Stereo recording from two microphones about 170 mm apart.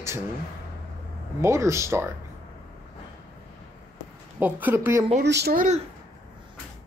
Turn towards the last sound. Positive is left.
turn(degrees=-45)  # may be behind; listen again after turning